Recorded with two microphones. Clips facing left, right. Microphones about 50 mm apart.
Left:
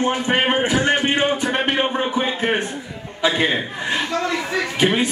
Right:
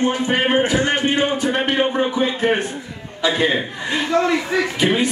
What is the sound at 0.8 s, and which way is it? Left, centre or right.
Music, left.